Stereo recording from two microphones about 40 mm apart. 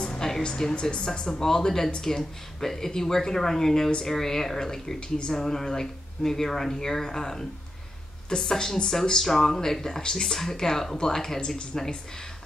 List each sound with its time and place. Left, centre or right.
0.0 s music: left
0.4 s speech: left